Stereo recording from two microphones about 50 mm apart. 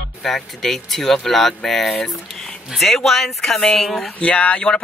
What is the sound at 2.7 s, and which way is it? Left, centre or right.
Speech, centre.